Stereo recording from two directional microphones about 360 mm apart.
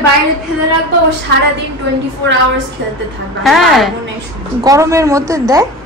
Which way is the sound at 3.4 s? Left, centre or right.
Centre.